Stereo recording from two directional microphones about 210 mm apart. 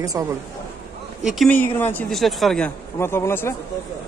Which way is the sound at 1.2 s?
5° left (ahead or behind).